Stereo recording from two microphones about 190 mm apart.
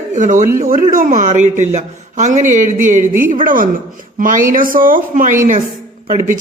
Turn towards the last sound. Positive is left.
turn(degrees=-45)  # may be behind; listen again after turning